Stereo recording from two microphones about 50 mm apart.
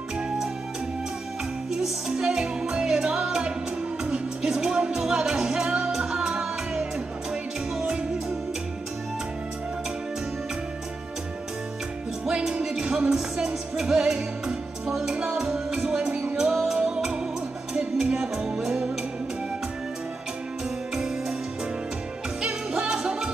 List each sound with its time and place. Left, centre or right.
1.7 s music: centre
12.3 s music: centre
15.1 s music: centre
16.1 s music: right
20.9 s music: centre
22.4 s music: centre